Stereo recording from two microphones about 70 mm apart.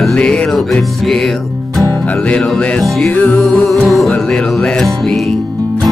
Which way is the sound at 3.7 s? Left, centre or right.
Centre.